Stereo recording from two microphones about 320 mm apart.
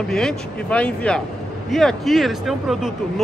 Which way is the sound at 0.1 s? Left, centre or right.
Centre.